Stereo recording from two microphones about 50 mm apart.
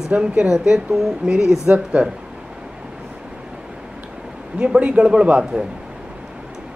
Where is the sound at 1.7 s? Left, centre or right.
Right.